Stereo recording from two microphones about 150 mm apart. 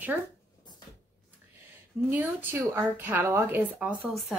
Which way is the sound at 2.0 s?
15° right (ahead or behind).